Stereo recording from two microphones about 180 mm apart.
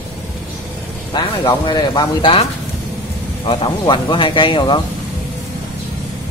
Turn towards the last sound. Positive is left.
turn(degrees=25)  # may be behind; listen again after turning